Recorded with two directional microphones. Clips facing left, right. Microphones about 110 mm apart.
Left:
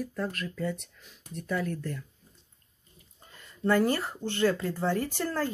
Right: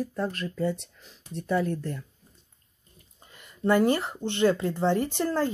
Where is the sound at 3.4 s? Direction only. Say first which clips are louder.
Right 3 dB; 20° right (ahead or behind).